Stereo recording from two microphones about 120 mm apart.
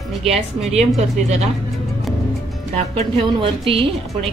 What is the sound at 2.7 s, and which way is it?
A woman's voice, 50° right (ahead or behind).